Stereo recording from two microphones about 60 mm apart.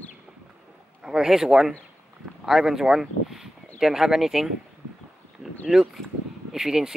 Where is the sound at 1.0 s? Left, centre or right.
Centre.